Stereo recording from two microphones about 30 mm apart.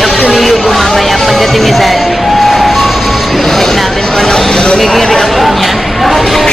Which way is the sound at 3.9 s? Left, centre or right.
Centre.